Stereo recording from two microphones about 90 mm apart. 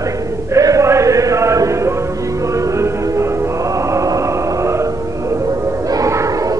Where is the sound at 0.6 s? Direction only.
35° right (ahead or behind).